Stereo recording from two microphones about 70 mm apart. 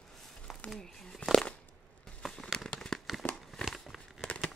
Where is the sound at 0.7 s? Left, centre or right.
Centre.